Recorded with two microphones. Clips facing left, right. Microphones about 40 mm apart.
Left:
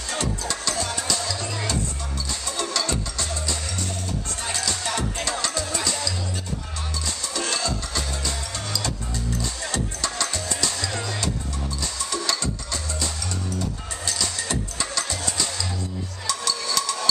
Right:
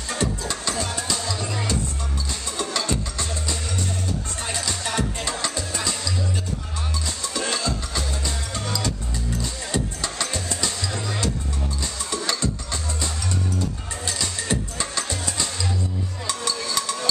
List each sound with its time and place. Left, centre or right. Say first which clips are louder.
0.2 s music: right 2 dB; right
4.4 s music: left 2 dB; right
7.3 s music: right 1 dB; centre
12.1 s music: even; right
14.0 s music: right 1 dB; right